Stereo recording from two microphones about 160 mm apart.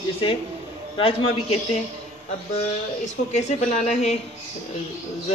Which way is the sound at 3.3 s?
45° left (ahead or behind).